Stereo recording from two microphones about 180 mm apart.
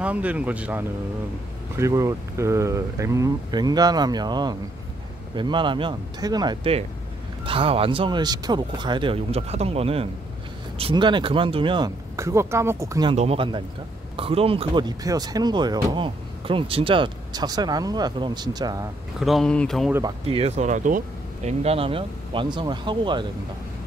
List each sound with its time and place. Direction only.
0.0 s speech: 5° right (ahead or behind)
13.1 s speech: 35° right (ahead or behind)
19.1 s speech: centre (ahead or behind)
19.9 s speech: 20° right (ahead or behind); by 21.0 s 45° right (ahead or behind)
21.5 s speech: 35° right (ahead or behind)